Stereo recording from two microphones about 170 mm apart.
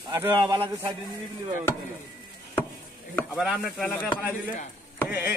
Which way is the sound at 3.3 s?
5° right (ahead or behind).